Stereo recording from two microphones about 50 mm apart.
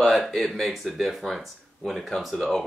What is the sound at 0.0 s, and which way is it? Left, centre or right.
Speech, centre.